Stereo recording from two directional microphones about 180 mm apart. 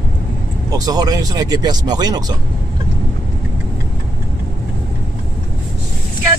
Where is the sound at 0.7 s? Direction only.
20° right (ahead or behind).